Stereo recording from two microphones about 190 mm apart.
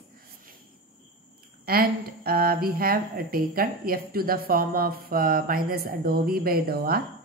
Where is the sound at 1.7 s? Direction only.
50° right (ahead or behind).